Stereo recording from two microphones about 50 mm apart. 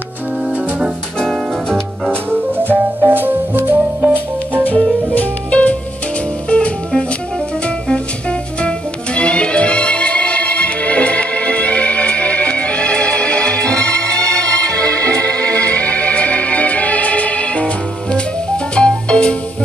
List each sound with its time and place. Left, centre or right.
2.5 s music: right
4.6 s music: left
18.8 s music: centre